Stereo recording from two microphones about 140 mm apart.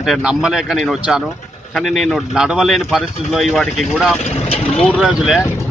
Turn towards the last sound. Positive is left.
turn(degrees=-5)  # may be behind; listen again after turning